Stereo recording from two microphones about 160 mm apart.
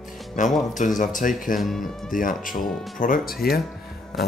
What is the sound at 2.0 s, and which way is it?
Speech, 60° left (ahead or behind).